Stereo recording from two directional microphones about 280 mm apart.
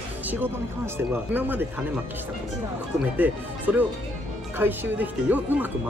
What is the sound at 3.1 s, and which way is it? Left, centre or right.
Speech, centre.